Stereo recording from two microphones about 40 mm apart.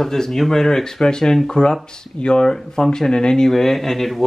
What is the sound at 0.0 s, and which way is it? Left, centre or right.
Speech, centre.